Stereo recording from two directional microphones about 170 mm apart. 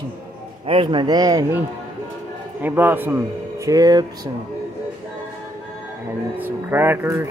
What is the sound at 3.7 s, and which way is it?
Speech, 20° right (ahead or behind).